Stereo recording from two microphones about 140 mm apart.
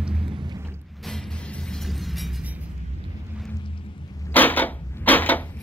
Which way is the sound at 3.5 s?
35° left (ahead or behind).